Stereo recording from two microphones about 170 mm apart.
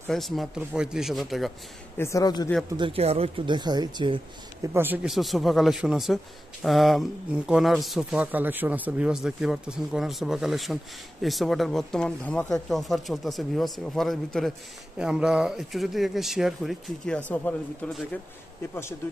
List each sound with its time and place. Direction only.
0.1 s speech: centre (ahead or behind)
2.0 s speech: 20° left (ahead or behind)
2.8 s speech: 35° right (ahead or behind)
4.7 s speech: 10° right (ahead or behind); by 17.9 s 10° left (ahead or behind)